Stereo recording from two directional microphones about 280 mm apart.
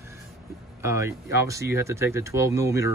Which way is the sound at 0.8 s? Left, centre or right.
Centre.